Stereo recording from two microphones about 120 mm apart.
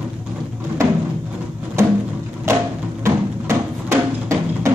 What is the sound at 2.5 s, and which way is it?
Music, 25° right (ahead or behind).